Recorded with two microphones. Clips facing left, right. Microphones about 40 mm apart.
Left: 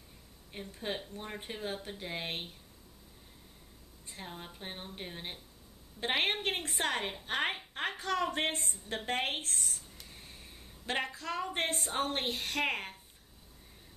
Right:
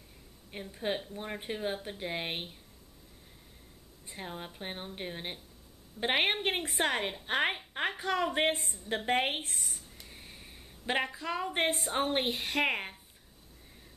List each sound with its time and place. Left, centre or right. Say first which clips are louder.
0.5 s speech: right 4 dB; centre
4.1 s a woman's voice: right 4 dB; centre
8.8 s a sound: right 5 dB; centre
11.5 s speech: right 5 dB; centre